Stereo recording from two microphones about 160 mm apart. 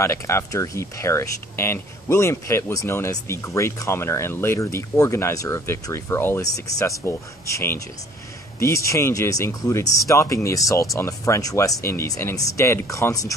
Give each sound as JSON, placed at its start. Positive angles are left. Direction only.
{"t": 0.0, "sound": "speech", "side_deg": 20}